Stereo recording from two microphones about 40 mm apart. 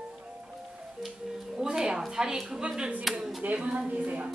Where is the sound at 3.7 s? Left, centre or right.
Right.